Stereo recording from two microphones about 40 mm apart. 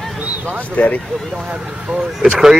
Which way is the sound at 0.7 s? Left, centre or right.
Left.